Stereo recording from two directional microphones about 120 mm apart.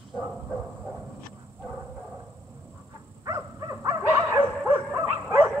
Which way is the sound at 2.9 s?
25° right (ahead or behind).